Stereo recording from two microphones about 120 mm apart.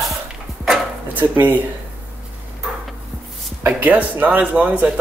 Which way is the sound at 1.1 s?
15° right (ahead or behind).